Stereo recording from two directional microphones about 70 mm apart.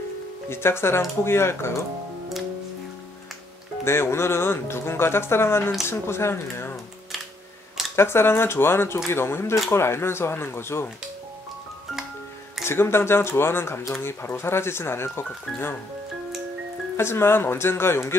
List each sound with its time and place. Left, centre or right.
0.5 s speech: left
3.8 s speech: left
7.9 s speech: left
12.6 s speech: left
16.9 s speech: left